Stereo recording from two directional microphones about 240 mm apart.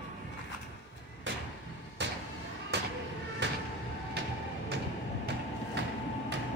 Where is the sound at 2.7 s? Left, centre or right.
Right.